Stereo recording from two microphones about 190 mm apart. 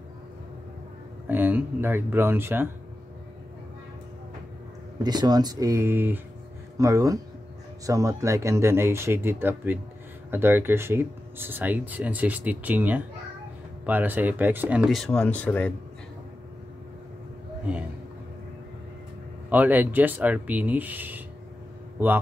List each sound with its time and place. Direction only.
1.3 s speech: 10° right (ahead or behind)
5.0 s speech: 20° right (ahead or behind); by 15.7 s 10° left (ahead or behind)
19.5 s speech: 10° right (ahead or behind)